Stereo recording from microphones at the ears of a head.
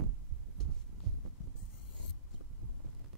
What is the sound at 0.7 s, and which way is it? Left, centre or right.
Heart sounds, right.